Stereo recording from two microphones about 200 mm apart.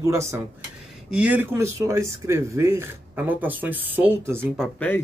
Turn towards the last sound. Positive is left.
turn(degrees=-10)  # may be behind; listen again after turning